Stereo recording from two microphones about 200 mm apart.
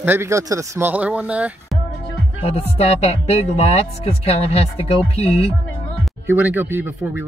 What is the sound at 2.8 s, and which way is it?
Speech, 30° left (ahead or behind).